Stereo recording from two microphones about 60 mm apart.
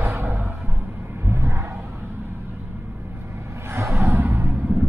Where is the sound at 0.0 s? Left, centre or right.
Right.